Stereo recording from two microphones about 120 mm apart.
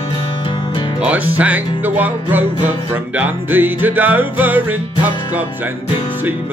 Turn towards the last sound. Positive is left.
turn(degrees=-15)  # may be behind; listen again after turning